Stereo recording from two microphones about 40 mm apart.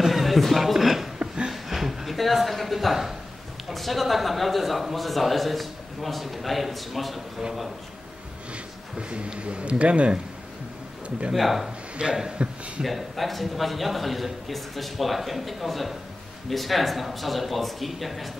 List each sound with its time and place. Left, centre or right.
0.0 s music: centre
1.2 s a sound: centre
1.5 s a sound: centre
3.6 s speech: centre
9.1 s speech: right
11.3 s speech: centre
12.0 s speech: right
12.4 s a man's voice: right
12.8 s speech: centre